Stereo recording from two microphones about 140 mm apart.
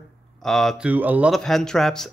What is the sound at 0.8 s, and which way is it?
Speech, 10° right (ahead or behind).